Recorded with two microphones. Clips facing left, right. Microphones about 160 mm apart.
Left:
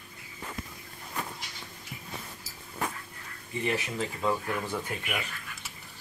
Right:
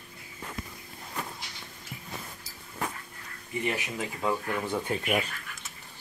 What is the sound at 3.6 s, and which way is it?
Speech, 15° right (ahead or behind).